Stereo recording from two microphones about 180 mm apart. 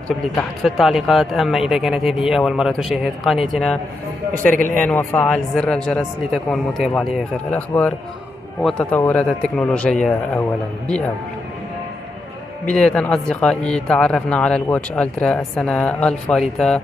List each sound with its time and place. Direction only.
0.4 s a man's voice: centre (ahead or behind)
12.6 s speech: 5° left (ahead or behind)